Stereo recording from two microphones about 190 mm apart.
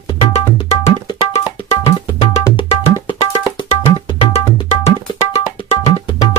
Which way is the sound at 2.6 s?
25° left (ahead or behind).